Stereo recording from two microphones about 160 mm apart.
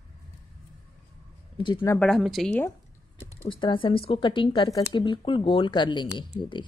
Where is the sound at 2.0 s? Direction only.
Centre (ahead or behind).